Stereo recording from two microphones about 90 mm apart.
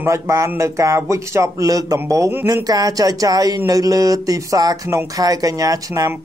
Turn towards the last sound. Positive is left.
turn(degrees=-40)  # may be behind; listen again after turning